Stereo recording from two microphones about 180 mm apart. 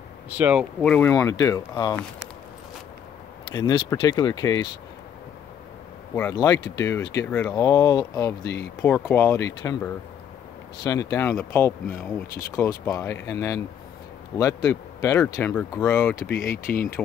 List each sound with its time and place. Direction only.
0.4 s speech: 5° right (ahead or behind); by 2.0 s 20° left (ahead or behind)
3.5 s speech: 20° left (ahead or behind)
6.1 s speech: 15° left (ahead or behind)
16.5 s speech: 55° left (ahead or behind)